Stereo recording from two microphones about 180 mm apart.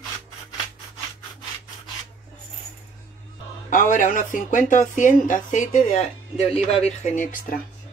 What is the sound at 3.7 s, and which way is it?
Speech, 45° left (ahead or behind).